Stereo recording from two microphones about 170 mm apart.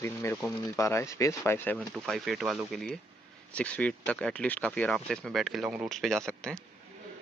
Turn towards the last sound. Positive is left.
turn(degrees=5)  # may be behind; listen again after turning